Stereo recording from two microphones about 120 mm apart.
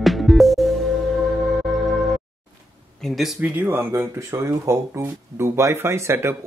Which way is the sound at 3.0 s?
Centre (ahead or behind).